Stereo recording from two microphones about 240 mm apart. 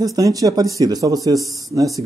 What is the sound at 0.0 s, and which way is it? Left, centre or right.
Speech, centre.